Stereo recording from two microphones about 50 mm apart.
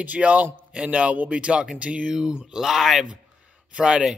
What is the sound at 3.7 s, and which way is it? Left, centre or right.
Speech, centre.